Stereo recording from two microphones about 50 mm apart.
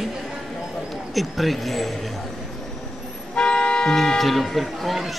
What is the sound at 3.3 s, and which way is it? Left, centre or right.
Toot, centre.